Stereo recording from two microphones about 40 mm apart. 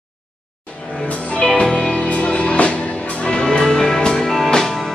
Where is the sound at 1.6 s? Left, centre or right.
Left.